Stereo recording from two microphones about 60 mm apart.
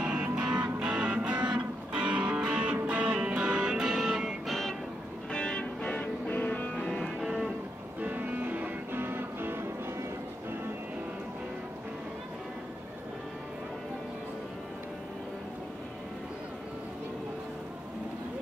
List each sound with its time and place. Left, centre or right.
0.0 s music: centre
5.3 s music: centre
6.7 s music: centre
7.2 s music: centre
8.0 s music: right